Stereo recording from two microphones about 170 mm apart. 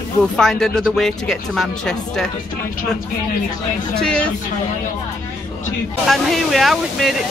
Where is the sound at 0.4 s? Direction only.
5° left (ahead or behind).